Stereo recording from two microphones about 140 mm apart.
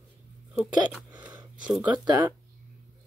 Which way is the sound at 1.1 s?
30° right (ahead or behind).